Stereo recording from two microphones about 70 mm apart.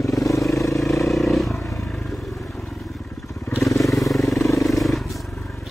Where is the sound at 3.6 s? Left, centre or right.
Left.